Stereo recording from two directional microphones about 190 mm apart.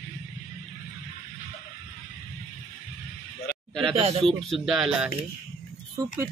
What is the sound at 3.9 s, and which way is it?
Speech, 30° right (ahead or behind).